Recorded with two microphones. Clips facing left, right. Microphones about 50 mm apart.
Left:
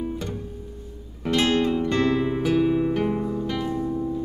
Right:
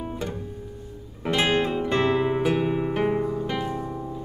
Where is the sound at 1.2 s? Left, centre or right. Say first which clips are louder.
Left 1 dB; centre.